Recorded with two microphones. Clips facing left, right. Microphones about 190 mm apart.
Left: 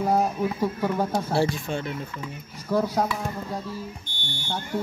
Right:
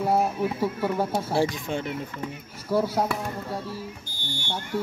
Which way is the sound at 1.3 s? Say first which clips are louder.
Even; 15° right (ahead or behind).